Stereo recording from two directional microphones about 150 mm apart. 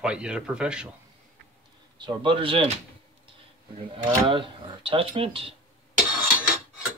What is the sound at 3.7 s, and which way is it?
Speech, 40° right (ahead or behind).